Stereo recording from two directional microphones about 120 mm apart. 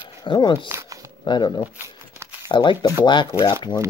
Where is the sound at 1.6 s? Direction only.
20° right (ahead or behind).